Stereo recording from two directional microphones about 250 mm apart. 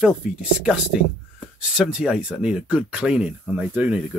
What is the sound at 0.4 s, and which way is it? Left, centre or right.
Speech, centre.